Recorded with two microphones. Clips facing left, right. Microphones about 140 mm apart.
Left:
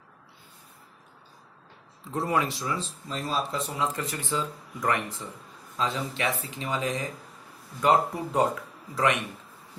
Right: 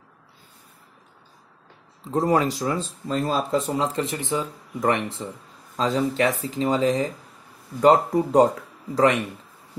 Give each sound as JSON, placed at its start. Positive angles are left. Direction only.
{"t": 2.1, "sound": "speech", "side_deg": -40}
{"t": 3.8, "sound": "speech", "side_deg": -25}
{"t": 5.8, "sound": "speech", "side_deg": -40}